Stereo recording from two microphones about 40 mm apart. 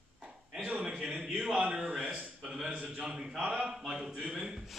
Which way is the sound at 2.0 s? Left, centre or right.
Right.